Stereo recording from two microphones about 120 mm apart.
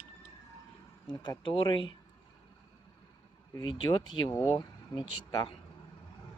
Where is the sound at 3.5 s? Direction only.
40° left (ahead or behind).